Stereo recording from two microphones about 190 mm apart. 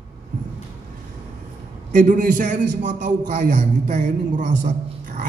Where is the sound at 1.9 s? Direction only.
40° right (ahead or behind).